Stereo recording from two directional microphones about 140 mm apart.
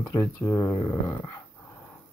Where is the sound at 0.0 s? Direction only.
20° left (ahead or behind).